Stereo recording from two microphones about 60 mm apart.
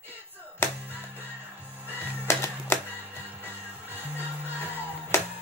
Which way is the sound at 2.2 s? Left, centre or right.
Left.